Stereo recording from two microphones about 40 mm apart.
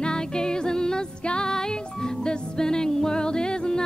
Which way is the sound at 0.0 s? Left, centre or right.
Centre.